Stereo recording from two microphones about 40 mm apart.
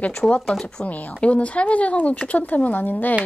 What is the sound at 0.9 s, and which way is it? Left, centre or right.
Speech, left.